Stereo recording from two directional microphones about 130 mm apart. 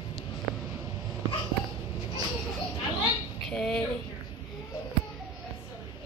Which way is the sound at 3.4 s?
5° left (ahead or behind).